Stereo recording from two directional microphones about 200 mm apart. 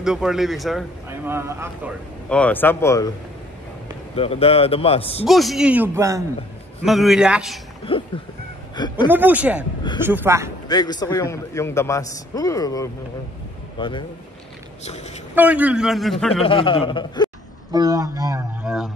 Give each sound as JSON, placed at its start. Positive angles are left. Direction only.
{"t": 0.0, "sound": "a man's voice", "side_deg": -5}
{"t": 1.2, "sound": "speech", "side_deg": -10}
{"t": 2.2, "sound": "a man's voice", "side_deg": 5}
{"t": 4.1, "sound": "a man's voice", "side_deg": 30}
{"t": 5.2, "sound": "a man's voice", "side_deg": 0}
{"t": 6.8, "sound": "a man's voice", "side_deg": 0}
{"t": 7.9, "sound": "a man's voice", "side_deg": 25}
{"t": 9.1, "sound": "speech", "side_deg": -10}
{"t": 10.7, "sound": "a man's voice", "side_deg": 20}
{"t": 15.3, "sound": "a man's voice", "side_deg": -10}
{"t": 16.4, "sound": "a man's voice", "side_deg": 25}
{"t": 17.7, "sound": "speech", "side_deg": -15}